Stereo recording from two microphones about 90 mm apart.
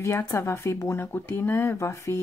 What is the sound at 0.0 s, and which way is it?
Speech, 30° left (ahead or behind).